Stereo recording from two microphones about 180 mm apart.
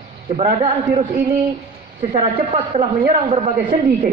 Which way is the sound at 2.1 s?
35° right (ahead or behind).